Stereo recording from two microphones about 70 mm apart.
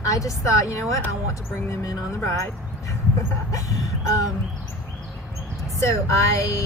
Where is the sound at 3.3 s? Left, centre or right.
Left.